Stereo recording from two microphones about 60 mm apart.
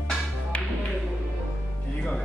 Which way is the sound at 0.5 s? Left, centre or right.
Left.